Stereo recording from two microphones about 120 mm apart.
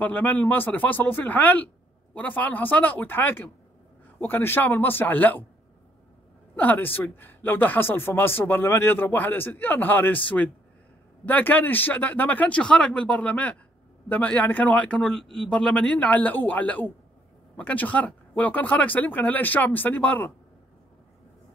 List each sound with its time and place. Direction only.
0.0 s speech: 15° left (ahead or behind)
6.5 s speech: 15° left (ahead or behind)